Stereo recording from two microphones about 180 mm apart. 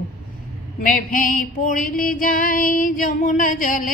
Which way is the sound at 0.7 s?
50° left (ahead or behind).